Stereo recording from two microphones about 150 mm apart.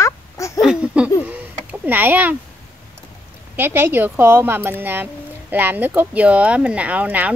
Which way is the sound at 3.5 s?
15° right (ahead or behind).